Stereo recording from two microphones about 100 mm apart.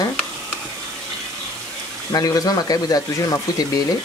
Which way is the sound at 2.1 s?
40° left (ahead or behind).